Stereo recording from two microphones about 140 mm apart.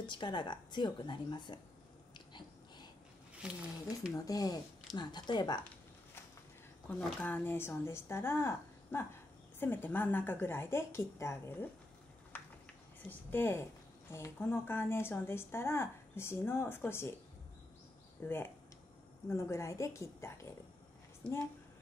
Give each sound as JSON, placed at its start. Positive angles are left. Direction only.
{"t": 0.0, "sound": "speech", "side_deg": 35}
{"t": 2.1, "sound": "wheeze", "side_deg": 35}
{"t": 3.4, "sound": "speech", "side_deg": -5}
{"t": 4.1, "sound": "a woman's voice", "side_deg": 25}
{"t": 7.2, "sound": "a woman's voice", "side_deg": 10}
{"t": 12.3, "sound": "a sound", "side_deg": 10}
{"t": 13.1, "sound": "a woman's voice", "side_deg": 15}
{"t": 18.2, "sound": "a woman's voice", "side_deg": 15}
{"t": 21.2, "sound": "a woman's voice", "side_deg": 10}